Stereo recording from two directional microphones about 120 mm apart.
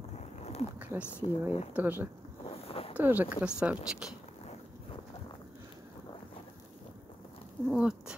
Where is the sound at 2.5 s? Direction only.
55° left (ahead or behind).